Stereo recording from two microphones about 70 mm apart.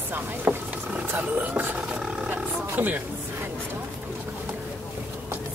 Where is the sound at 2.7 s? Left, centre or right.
Right.